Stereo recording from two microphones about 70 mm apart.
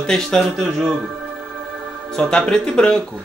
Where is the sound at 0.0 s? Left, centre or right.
Centre.